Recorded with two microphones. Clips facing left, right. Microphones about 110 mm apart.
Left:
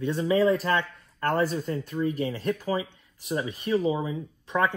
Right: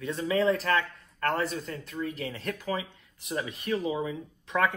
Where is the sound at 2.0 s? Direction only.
20° left (ahead or behind).